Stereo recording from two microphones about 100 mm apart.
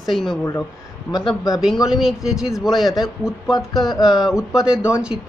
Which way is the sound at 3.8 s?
40° left (ahead or behind).